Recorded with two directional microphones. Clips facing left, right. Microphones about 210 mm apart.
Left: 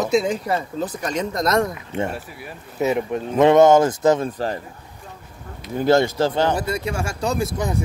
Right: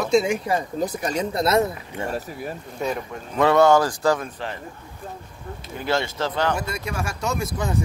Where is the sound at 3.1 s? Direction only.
20° left (ahead or behind).